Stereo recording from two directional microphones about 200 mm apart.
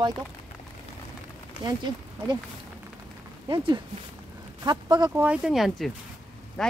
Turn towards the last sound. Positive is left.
turn(degrees=5)  # may be behind; listen again after turning